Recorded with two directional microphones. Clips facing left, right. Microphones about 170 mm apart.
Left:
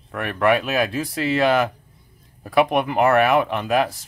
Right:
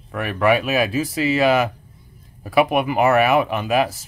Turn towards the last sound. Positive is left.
turn(degrees=-5)  # may be behind; listen again after turning